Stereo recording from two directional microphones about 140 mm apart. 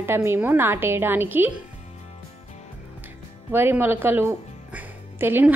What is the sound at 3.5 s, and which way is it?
A woman's voice, 15° right (ahead or behind).